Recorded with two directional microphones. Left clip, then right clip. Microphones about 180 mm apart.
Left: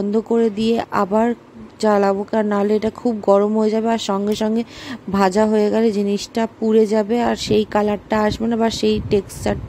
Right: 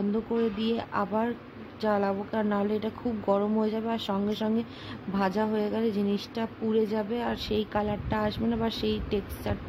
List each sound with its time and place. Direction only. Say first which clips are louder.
0.1 s speech: left 13 dB; 45° left (ahead or behind)